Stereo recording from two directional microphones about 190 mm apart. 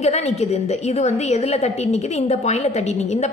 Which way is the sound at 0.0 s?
35° left (ahead or behind).